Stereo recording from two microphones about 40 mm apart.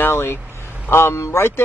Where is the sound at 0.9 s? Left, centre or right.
Left.